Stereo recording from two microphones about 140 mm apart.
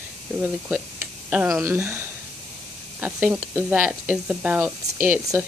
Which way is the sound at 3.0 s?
15° right (ahead or behind).